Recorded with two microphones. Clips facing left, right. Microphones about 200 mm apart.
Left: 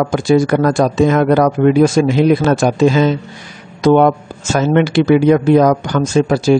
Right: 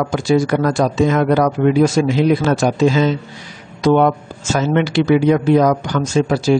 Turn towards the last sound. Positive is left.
turn(degrees=50)  # may be behind; listen again after turning